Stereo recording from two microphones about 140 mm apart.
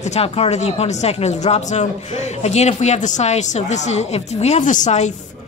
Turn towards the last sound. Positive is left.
turn(degrees=60)  # may be behind; listen again after turning